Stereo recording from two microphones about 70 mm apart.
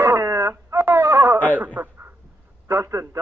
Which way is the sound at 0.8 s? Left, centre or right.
Right.